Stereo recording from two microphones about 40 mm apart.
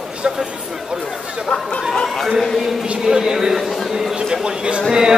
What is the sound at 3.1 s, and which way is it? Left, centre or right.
Speech, centre.